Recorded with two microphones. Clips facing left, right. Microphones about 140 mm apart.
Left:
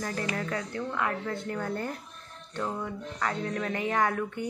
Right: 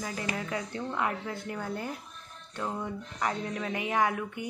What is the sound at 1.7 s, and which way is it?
A woman's voice, 10° right (ahead or behind).